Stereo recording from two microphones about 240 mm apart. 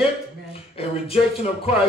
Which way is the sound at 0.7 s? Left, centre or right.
Left.